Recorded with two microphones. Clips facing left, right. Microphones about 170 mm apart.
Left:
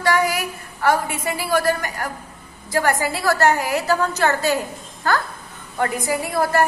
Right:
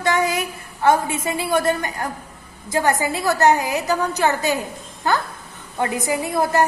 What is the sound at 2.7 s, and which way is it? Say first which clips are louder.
A woman's voice: right 1 dB; 20° right (ahead or behind).